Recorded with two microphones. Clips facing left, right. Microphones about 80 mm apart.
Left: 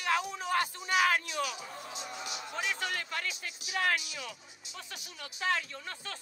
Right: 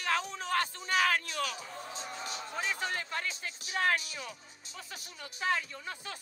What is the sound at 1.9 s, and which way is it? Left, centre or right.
Speech, right.